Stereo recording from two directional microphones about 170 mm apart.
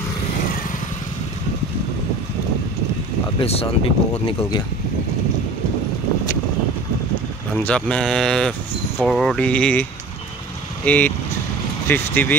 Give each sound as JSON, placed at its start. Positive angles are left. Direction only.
{"t": 3.3, "sound": "speech", "side_deg": 35}
{"t": 7.5, "sound": "speech", "side_deg": 5}
{"t": 10.9, "sound": "speech", "side_deg": 10}